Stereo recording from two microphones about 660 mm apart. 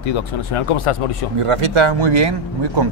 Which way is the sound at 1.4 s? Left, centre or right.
Right.